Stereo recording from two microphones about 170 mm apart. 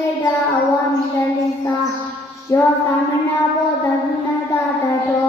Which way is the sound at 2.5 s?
20° left (ahead or behind).